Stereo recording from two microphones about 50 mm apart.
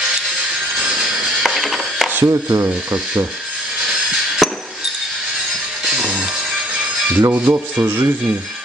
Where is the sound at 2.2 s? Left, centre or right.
Right.